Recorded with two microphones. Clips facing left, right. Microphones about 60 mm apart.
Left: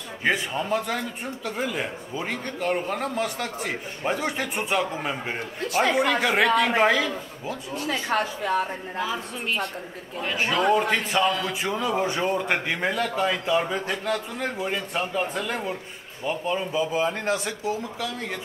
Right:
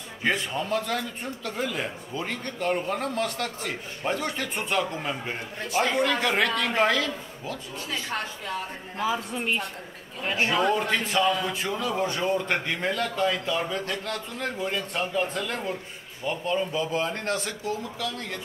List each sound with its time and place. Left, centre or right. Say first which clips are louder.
0.2 s a man's voice: left 2 dB; centre
8.1 s a woman's voice: left 10 dB; left
9.0 s a man's voice: right 4 dB; centre
11.6 s a man's voice: left 2 dB; centre